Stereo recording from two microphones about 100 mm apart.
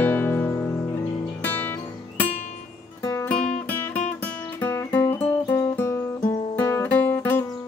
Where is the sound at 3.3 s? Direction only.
15° left (ahead or behind); by 6.8 s 30° left (ahead or behind).